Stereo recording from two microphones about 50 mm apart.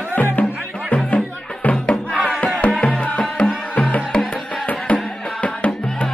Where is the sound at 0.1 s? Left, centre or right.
Left.